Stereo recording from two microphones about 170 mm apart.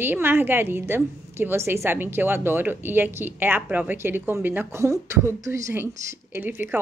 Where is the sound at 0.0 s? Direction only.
10° right (ahead or behind).